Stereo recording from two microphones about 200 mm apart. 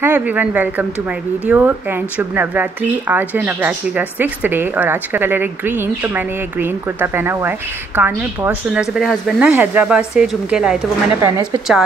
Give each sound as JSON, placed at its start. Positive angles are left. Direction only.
{"t": 0.0, "sound": "a woman's voice", "side_deg": -10}
{"t": 11.1, "sound": "a woman's voice", "side_deg": -15}